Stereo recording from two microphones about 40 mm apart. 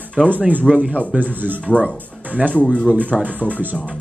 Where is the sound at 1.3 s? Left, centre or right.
Right.